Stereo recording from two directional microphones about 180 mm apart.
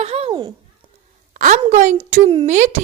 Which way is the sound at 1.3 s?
45° right (ahead or behind).